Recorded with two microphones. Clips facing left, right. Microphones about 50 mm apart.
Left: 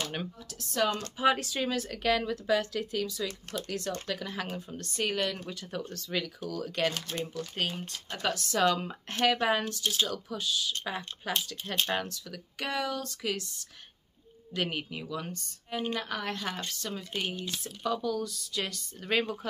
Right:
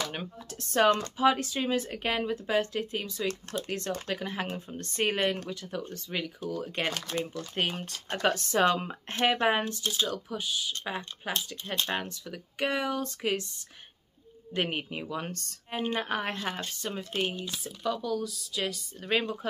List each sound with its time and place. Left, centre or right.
0.6 s speech: right
1.1 s speech: centre
1.5 s speech: centre
5.5 s speech: centre; by 13.5 s right
14.5 s speech: right
16.0 s speech: right
17.6 s speech: centre